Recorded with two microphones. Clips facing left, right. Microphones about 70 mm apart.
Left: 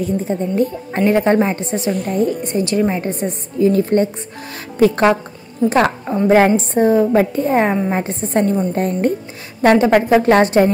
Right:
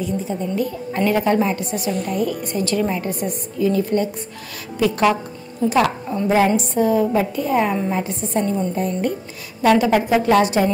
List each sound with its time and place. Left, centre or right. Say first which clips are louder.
0.0 s a woman's voice: left 4 dB; left
3.7 s a woman's voice: left 4 dB; left